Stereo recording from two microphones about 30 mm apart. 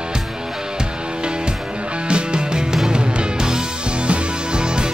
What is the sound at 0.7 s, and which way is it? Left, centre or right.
Music, right.